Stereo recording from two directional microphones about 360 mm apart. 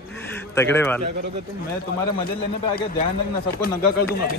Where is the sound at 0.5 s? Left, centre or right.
Centre.